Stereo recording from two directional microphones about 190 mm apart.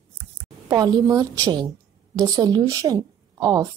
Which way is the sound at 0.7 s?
20° right (ahead or behind).